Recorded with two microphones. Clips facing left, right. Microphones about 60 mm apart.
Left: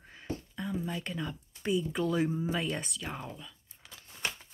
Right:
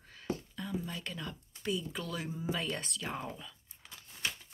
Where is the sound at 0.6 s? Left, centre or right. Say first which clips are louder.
Left 3 dB; centre.